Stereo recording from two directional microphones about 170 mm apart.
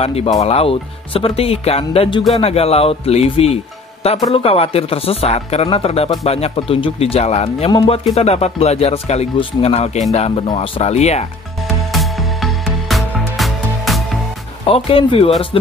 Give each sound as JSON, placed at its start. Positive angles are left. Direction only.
{"t": 0.0, "sound": "speech", "side_deg": 35}
{"t": 11.9, "sound": "music", "side_deg": 0}
{"t": 14.6, "sound": "speech", "side_deg": 35}